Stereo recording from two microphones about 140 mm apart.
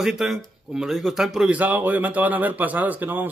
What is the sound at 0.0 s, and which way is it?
Speech, 5° right (ahead or behind).